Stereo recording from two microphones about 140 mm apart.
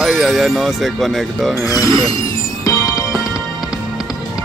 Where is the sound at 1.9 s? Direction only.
35° right (ahead or behind).